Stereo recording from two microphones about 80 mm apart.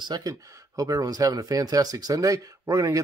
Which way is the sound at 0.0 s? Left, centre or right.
Right.